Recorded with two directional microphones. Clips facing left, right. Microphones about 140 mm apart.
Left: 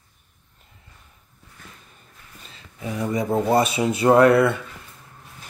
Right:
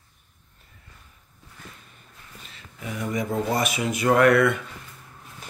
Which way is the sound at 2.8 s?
30° left (ahead or behind).